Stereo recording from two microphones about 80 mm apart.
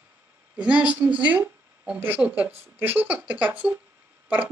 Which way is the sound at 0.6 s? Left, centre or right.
Centre.